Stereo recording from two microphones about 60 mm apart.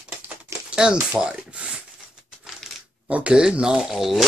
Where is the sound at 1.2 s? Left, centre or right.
Centre.